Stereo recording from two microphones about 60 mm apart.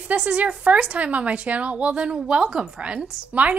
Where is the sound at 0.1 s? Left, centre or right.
Right.